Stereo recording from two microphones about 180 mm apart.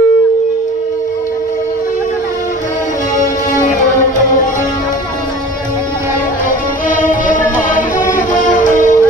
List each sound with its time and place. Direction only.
7.0 s music: 45° left (ahead or behind)